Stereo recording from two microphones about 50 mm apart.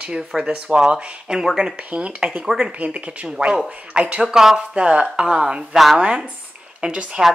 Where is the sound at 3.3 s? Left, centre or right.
Centre.